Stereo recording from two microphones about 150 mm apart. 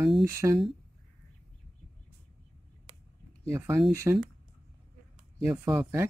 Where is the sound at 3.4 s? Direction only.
15° right (ahead or behind).